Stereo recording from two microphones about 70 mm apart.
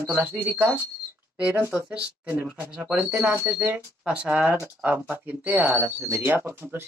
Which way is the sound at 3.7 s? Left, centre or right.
Centre.